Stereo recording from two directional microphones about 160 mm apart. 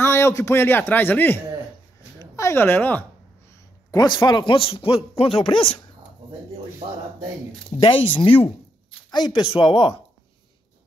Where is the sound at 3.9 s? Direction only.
25° left (ahead or behind).